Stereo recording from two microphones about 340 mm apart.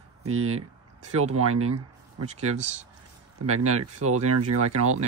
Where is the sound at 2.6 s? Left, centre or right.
Right.